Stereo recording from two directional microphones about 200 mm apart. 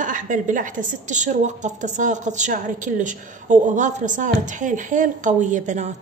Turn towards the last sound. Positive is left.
turn(degrees=-35)  # may be behind; listen again after turning